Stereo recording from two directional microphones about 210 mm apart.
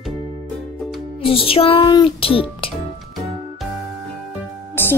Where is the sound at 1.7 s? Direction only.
20° left (ahead or behind).